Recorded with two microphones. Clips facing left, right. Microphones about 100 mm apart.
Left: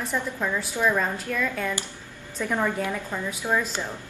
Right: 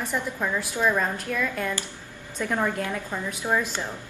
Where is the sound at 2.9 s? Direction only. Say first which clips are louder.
Even; 10° right (ahead or behind).